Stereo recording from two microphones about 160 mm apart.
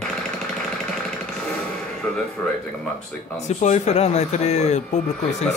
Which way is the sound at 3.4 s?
45° left (ahead or behind).